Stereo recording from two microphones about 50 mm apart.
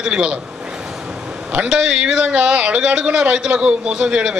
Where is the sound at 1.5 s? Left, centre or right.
Centre.